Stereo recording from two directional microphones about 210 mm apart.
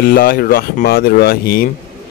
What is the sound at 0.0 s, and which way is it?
A man's voice, 45° left (ahead or behind).